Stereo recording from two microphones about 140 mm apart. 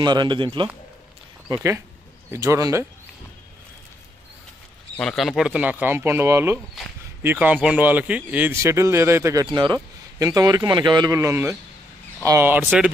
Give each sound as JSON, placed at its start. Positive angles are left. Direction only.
{"t": 0.0, "sound": "speech", "side_deg": -35}
{"t": 1.5, "sound": "speech", "side_deg": -20}
{"t": 4.9, "sound": "speech", "side_deg": 0}